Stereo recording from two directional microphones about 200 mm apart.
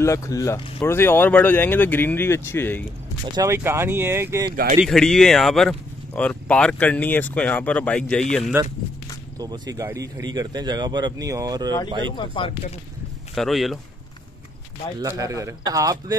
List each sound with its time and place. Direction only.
0.0 s speech: 15° left (ahead or behind)
3.3 s a man's voice: 15° right (ahead or behind)
4.8 s speech: centre (ahead or behind)
9.4 s a man's voice: 20° right (ahead or behind)
12.2 s speech: 25° left (ahead or behind)
13.3 s speech: centre (ahead or behind)
15.0 s a man's voice: 15° right (ahead or behind)